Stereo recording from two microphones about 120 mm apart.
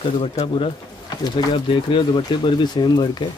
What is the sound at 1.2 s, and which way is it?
Speech, 45° left (ahead or behind).